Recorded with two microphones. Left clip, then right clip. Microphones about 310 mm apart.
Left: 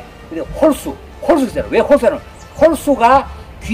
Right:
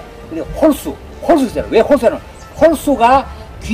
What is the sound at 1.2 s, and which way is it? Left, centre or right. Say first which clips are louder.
A man's voice: right 1 dB; centre.